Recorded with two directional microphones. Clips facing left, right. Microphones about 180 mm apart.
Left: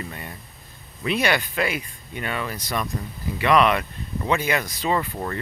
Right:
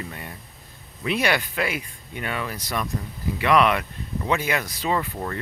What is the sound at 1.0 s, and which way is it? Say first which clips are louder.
Speech: left 1 dB; 10° right (ahead or behind).